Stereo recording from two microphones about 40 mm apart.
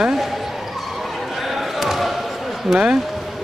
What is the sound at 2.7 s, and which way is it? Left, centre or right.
Speech, right.